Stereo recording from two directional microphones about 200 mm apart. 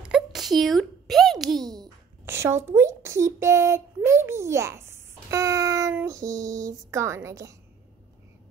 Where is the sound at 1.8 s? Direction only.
10° right (ahead or behind).